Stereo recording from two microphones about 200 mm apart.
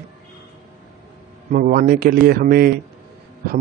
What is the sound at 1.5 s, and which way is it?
A man's voice, 45° right (ahead or behind).